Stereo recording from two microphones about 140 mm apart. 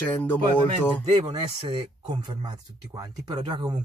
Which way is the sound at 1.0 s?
30° right (ahead or behind).